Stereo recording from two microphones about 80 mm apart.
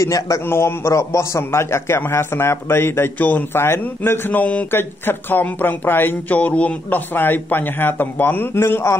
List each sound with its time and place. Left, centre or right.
0.0 s a man's voice: left
0.5 s a man's voice: left